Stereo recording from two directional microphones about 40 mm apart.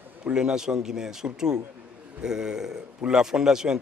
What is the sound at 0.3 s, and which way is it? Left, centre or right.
A man's voice, right.